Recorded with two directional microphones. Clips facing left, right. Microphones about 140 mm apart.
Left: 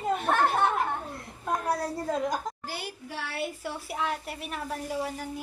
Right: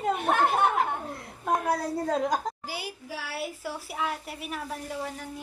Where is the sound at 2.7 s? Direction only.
5° right (ahead or behind).